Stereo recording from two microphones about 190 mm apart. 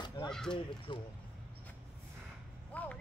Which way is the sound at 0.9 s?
25° left (ahead or behind).